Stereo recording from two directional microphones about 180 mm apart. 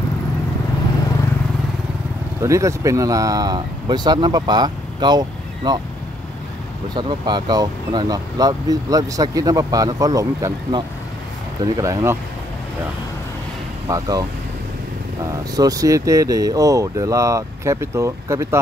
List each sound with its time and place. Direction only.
2.4 s speech: 15° right (ahead or behind)
7.0 s speech: 25° right (ahead or behind)
13.8 s speech: 20° right (ahead or behind)
15.2 s speech: 20° right (ahead or behind)